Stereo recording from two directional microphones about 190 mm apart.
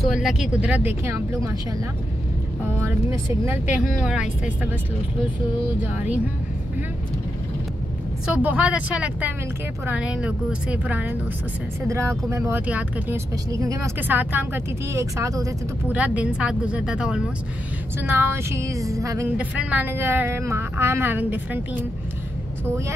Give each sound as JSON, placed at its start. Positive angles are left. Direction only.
{"t": 0.0, "sound": "speech", "side_deg": 0}
{"t": 2.8, "sound": "speech", "side_deg": -10}
{"t": 8.4, "sound": "speech", "side_deg": -5}
{"t": 19.3, "sound": "speech", "side_deg": -5}